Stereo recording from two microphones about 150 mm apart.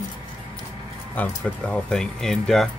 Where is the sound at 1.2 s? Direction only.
5° left (ahead or behind).